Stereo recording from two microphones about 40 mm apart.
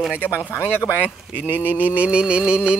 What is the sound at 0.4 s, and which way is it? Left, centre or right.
Speech, left.